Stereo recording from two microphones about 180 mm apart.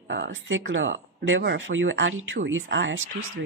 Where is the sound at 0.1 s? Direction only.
90° right.